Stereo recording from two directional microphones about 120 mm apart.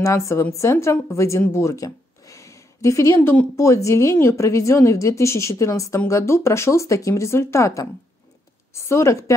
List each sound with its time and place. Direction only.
0.0 s a woman's voice: 25° left (ahead or behind)
1.4 s a sound: 20° left (ahead or behind)
3.2 s a woman's voice: 15° left (ahead or behind)